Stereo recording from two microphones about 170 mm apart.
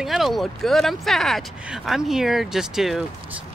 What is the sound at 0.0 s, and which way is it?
Speech, centre (ahead or behind).